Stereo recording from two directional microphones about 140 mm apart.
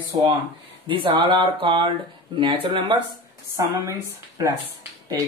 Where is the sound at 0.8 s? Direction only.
35° right (ahead or behind).